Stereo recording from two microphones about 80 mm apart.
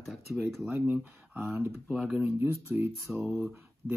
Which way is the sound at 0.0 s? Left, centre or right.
Centre.